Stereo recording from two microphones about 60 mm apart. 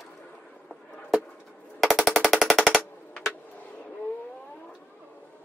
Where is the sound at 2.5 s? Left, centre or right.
Centre.